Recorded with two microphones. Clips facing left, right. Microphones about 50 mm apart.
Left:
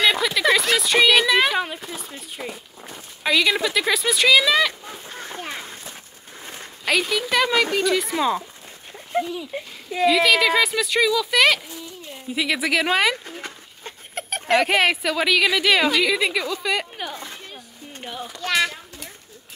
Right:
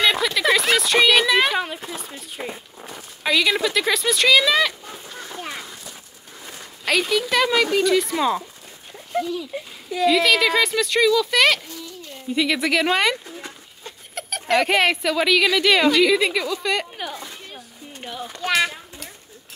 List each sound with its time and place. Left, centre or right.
0.0 s a woman's voice: centre
5.0 s a sound: left
6.8 s a woman's voice: centre
9.1 s speech: left
10.0 s a woman's voice: centre
11.7 s a sound: centre
12.3 s a woman's voice: centre
13.2 s dog: left
13.8 s rodents: left
14.6 s a woman's voice: centre
17.1 s speech: left
18.0 s a woman's voice: centre
18.4 s a child's voice: centre